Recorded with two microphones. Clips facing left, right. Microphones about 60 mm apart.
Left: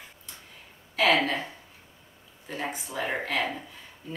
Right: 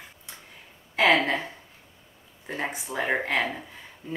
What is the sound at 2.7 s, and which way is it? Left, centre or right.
Speech, centre.